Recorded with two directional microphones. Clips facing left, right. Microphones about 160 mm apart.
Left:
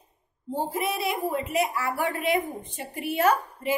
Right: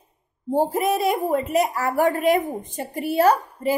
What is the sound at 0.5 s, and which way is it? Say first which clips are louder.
Speech: right 8 dB; 40° right (ahead or behind).